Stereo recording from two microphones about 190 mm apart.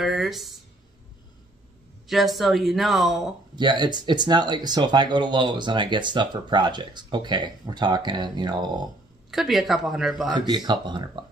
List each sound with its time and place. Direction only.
0.0 s speech: centre (ahead or behind)
2.0 s speech: centre (ahead or behind)
3.5 s speech: 25° right (ahead or behind)
9.3 s speech: centre (ahead or behind)
10.3 s speech: 20° right (ahead or behind)